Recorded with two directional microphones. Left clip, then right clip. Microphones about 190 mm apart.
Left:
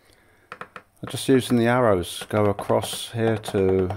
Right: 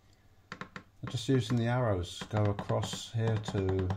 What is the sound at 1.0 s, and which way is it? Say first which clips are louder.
Speech: left 12 dB; 60° left (ahead or behind).